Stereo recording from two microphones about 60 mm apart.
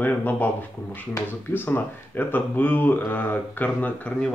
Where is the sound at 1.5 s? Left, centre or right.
Left.